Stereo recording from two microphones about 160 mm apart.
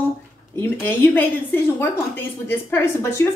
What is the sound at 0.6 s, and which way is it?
A woman's voice, 15° left (ahead or behind).